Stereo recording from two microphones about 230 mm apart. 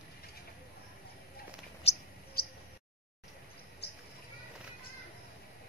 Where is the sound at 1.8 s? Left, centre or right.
Left.